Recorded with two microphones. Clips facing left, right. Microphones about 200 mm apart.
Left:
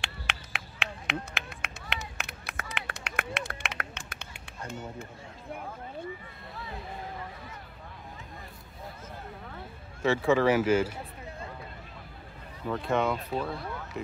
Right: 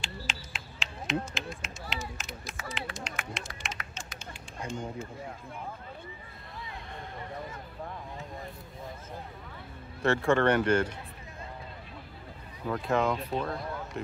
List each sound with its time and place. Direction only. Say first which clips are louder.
0.0 s a sound: left 1 dB; 65° left (ahead or behind)
10.0 s speech: left 1 dB; centre (ahead or behind)
12.6 s speech: even; centre (ahead or behind)